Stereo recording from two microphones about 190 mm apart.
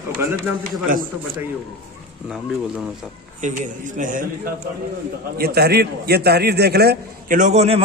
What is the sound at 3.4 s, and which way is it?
A man's voice, 40° right (ahead or behind).